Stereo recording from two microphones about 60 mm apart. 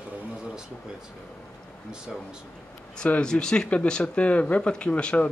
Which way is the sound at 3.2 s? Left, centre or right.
Centre.